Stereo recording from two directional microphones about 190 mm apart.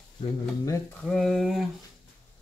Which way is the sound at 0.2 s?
15° left (ahead or behind).